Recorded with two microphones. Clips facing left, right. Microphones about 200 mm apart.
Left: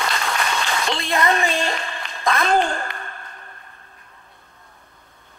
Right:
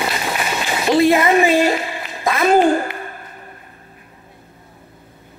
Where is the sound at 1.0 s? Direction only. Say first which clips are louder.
Right 9 dB; 10° right (ahead or behind).